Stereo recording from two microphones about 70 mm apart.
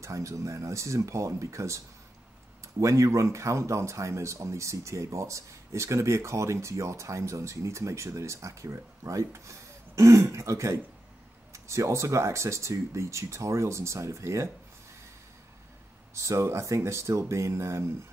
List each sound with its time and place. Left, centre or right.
0.0 s speech: right
2.8 s speech: right
16.2 s speech: right